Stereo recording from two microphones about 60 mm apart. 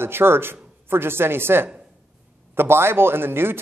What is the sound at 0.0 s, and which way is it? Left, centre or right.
A man's voice, right.